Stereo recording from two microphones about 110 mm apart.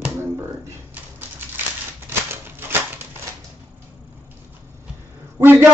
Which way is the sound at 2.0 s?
20° right (ahead or behind).